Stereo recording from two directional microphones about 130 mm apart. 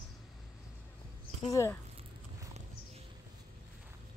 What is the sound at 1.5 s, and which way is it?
Speech, 25° left (ahead or behind).